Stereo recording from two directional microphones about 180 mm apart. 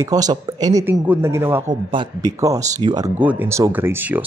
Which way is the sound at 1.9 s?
25° right (ahead or behind).